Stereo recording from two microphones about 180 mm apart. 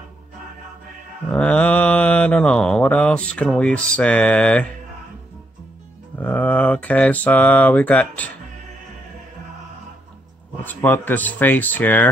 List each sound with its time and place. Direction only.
1.3 s mantra: 5° left (ahead or behind)
6.1 s mantra: 10° left (ahead or behind)
10.6 s mantra: 10° left (ahead or behind)